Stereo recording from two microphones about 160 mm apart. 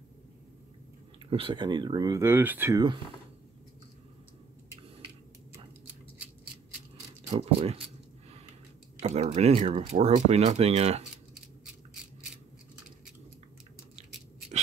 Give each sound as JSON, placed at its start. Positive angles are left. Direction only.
{"t": 1.3, "sound": "speech", "side_deg": -35}
{"t": 2.7, "sound": "speech", "side_deg": -25}
{"t": 7.2, "sound": "speech", "side_deg": -40}
{"t": 9.0, "sound": "speech", "side_deg": -40}